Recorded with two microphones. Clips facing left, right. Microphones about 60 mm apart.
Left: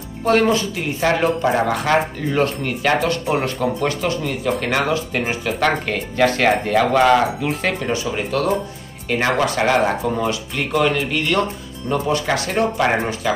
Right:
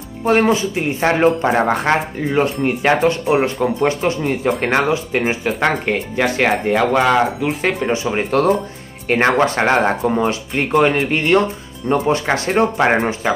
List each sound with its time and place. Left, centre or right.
0.2 s speech: centre
2.3 s speech: right
4.9 s speech: right
8.1 s speech: right